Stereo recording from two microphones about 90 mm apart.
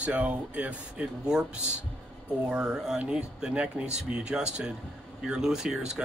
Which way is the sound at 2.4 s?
10° right (ahead or behind).